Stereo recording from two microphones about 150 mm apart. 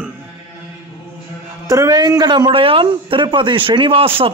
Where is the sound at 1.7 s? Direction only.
25° right (ahead or behind).